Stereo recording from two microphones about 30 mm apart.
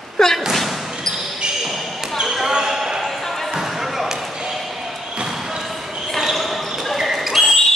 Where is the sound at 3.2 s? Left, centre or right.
Centre.